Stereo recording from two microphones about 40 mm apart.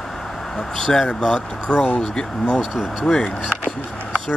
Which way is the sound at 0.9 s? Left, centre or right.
Left.